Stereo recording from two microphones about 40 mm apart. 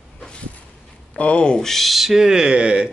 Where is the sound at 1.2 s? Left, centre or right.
Left.